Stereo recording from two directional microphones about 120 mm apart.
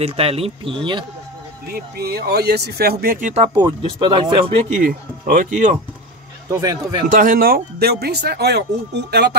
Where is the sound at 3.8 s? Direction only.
45° right (ahead or behind).